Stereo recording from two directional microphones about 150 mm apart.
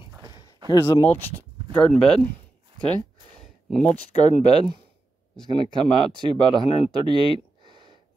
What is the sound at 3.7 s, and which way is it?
Speech, 5° left (ahead or behind).